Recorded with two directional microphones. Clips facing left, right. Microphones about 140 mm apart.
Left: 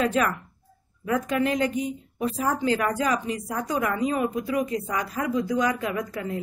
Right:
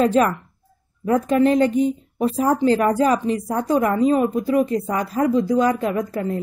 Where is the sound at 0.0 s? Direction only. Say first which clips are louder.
Right 7 dB; 35° right (ahead or behind).